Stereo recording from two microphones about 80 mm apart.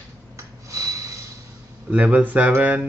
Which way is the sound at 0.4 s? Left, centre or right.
Right.